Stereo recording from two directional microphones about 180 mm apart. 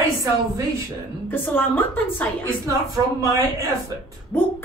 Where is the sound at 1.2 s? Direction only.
10° left (ahead or behind).